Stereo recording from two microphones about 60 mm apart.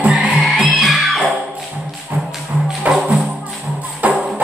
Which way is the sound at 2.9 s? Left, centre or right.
Centre.